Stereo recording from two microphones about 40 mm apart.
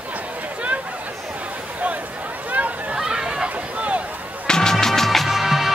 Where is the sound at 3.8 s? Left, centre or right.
Right.